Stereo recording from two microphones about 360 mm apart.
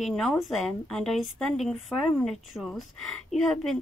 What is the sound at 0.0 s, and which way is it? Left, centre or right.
Speech, centre.